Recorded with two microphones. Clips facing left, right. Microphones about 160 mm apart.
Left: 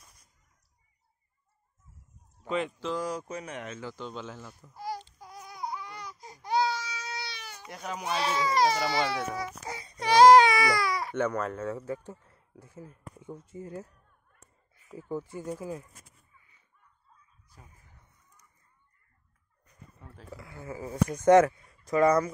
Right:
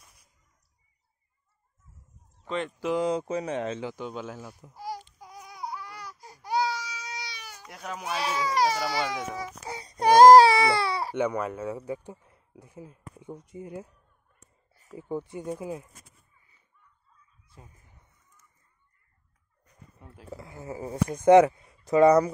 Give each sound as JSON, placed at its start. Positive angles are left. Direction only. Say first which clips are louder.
{"t": 0.0, "sound": "chicken", "louder": "even", "side_deg": 0}
{"t": 2.4, "sound": "speech", "louder": "left 1 dB", "side_deg": 5}
{"t": 2.8, "sound": "speech", "louder": "right 6 dB", "side_deg": -20}
{"t": 3.9, "sound": "babbling", "louder": "right 3 dB", "side_deg": -10}
{"t": 7.6, "sound": "speech", "louder": "left 1 dB", "side_deg": 0}
{"t": 9.8, "sound": "baby cry", "louder": "right 4 dB", "side_deg": -40}
{"t": 10.4, "sound": "baby cry", "louder": "right 4 dB", "side_deg": -30}
{"t": 11.1, "sound": "speech", "louder": "right 1 dB", "side_deg": -10}
{"t": 14.7, "sound": "a sound", "louder": "right 2 dB", "side_deg": -40}
{"t": 15.0, "sound": "speech", "louder": "right 2 dB", "side_deg": -20}
{"t": 17.5, "sound": "fowl", "louder": "right 3 dB", "side_deg": -20}
{"t": 20.2, "sound": "speech", "louder": "right 3 dB", "side_deg": -25}